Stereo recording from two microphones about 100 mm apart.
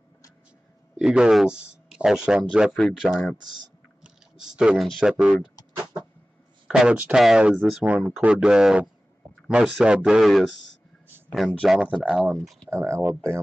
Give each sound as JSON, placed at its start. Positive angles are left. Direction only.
{"t": 0.9, "sound": "speech", "side_deg": -5}
{"t": 3.1, "sound": "speech", "side_deg": 5}
{"t": 4.0, "sound": "a sound", "side_deg": -5}
{"t": 5.0, "sound": "speech", "side_deg": -5}
{"t": 6.7, "sound": "speech", "side_deg": -5}
{"t": 12.3, "sound": "speech", "side_deg": 10}
{"t": 12.6, "sound": "speech", "side_deg": -30}